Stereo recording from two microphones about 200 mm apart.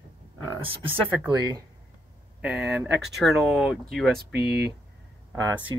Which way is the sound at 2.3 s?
5° right (ahead or behind).